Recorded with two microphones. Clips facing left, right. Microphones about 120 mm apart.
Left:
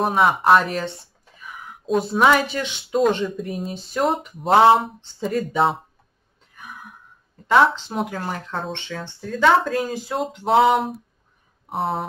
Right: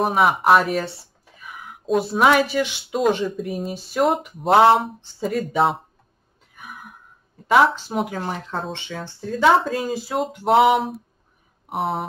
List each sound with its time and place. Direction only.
0.0 s speech: centre (ahead or behind)
6.5 s a sound: 5° right (ahead or behind)
7.4 s speech: 5° right (ahead or behind)
8.2 s speech: 15° right (ahead or behind)
8.5 s speech: centre (ahead or behind)